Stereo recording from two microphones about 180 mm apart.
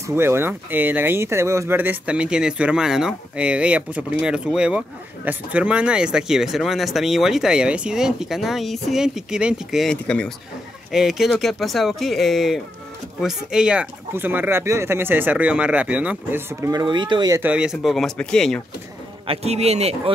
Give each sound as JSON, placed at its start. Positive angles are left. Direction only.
{"t": 0.0, "sound": "speech", "side_deg": -15}
{"t": 16.8, "sound": "speech", "side_deg": -25}
{"t": 17.4, "sound": "speech", "side_deg": -5}
{"t": 19.2, "sound": "a man's voice", "side_deg": -35}